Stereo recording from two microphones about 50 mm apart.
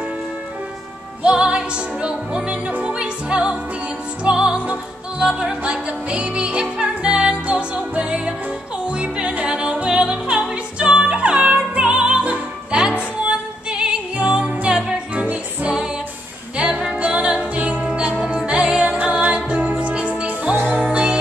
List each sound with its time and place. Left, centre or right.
1.2 s music: centre